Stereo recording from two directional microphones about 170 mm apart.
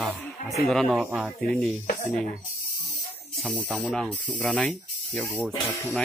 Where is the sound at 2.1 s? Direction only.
5° left (ahead or behind).